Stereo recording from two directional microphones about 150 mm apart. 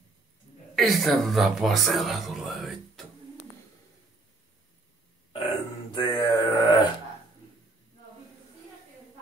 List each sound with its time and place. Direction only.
0.7 s a man's voice: centre (ahead or behind)
5.9 s mantra: 30° left (ahead or behind)